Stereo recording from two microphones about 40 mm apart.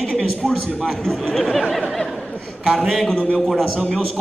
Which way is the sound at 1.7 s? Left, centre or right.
Centre.